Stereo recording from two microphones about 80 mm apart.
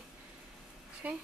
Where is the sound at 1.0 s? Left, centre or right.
Centre.